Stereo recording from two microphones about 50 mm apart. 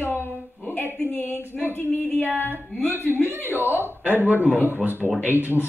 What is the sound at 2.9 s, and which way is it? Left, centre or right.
A man's voice, right.